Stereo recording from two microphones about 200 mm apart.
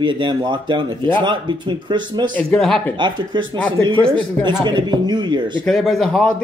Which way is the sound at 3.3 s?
25° right (ahead or behind).